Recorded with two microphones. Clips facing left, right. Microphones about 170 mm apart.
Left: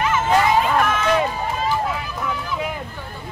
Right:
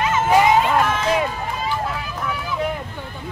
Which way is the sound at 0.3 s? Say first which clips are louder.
Right 3 dB; 15° right (ahead or behind).